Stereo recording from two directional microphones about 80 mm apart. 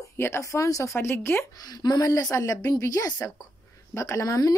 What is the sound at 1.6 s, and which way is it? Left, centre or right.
A woman's voice, left.